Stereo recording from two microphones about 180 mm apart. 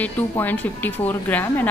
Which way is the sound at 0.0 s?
10° left (ahead or behind).